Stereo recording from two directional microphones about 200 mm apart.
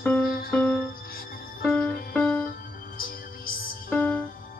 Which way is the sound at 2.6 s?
45° left (ahead or behind).